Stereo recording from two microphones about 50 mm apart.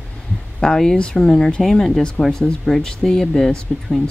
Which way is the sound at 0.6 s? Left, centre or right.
Centre.